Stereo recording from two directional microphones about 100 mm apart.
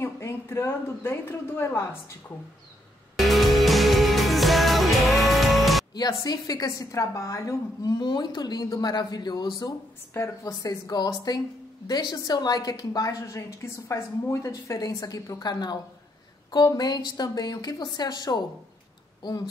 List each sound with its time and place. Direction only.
0.0 s speech: 25° left (ahead or behind)
3.2 s music: centre (ahead or behind)
5.9 s a woman's voice: 40° left (ahead or behind)
8.0 s a woman's voice: 45° left (ahead or behind)
10.1 s a woman's voice: 30° left (ahead or behind)